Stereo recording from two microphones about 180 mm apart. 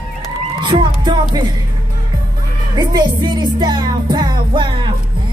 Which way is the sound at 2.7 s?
25° right (ahead or behind).